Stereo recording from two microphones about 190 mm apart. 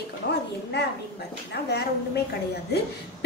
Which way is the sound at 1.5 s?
60° left (ahead or behind).